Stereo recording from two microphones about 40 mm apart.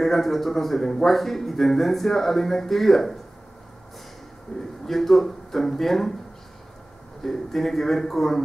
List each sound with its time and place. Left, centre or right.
0.0 s speech: centre
4.5 s a man's voice: centre
4.8 s speech: centre
7.2 s speech: centre